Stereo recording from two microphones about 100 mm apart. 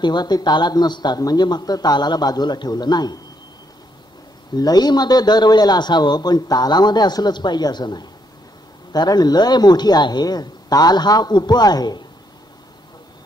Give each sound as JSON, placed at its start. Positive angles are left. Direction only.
{"t": 0.0, "sound": "a man's voice", "side_deg": 45}
{"t": 4.6, "sound": "a man's voice", "side_deg": 40}